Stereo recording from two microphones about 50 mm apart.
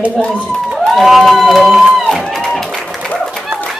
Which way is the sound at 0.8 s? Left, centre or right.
Centre.